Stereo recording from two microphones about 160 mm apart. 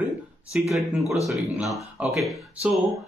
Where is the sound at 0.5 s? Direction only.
Centre (ahead or behind).